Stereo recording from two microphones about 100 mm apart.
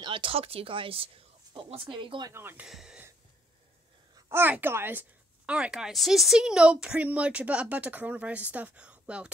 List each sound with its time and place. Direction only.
0.0 s speech: 60° right (ahead or behind)
1.9 s speech: 55° right (ahead or behind)
2.3 s a woman's voice: 20° right (ahead or behind)
2.6 s speech: 5° right (ahead or behind)
4.3 s a woman's voice: 20° right (ahead or behind)
5.5 s speech: 10° right (ahead or behind)